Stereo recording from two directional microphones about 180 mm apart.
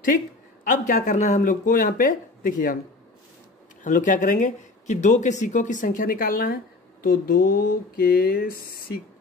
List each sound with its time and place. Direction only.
0.7 s speech: 45° left (ahead or behind)
3.8 s speech: 45° left (ahead or behind)